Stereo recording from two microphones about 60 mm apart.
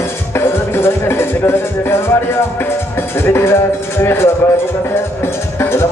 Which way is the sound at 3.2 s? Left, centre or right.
Left.